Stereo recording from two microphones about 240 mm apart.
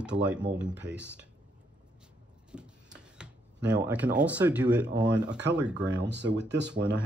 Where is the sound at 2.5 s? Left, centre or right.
Centre.